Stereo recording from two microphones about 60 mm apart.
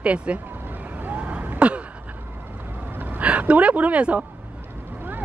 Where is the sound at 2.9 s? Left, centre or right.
Right.